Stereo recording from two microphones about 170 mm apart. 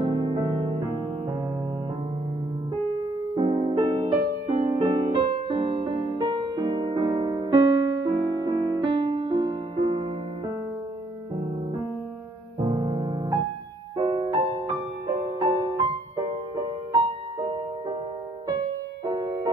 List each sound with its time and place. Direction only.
0.0 s music: 25° right (ahead or behind)
3.3 s music: 30° right (ahead or behind)
12.6 s music: 30° right (ahead or behind)
19.0 s music: 25° right (ahead or behind)